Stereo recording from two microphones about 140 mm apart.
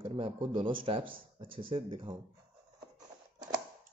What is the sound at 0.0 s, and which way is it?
Speech, 40° right (ahead or behind).